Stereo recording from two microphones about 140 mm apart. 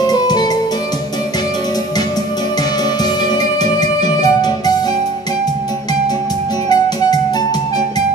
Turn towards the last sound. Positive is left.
turn(degrees=30)  # may be behind; listen again after turning